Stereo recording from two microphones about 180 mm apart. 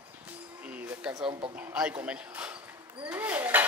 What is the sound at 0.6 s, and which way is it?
Music, 10° right (ahead or behind).